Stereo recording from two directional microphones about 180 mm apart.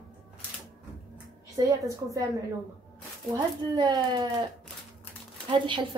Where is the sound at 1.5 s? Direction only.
20° right (ahead or behind).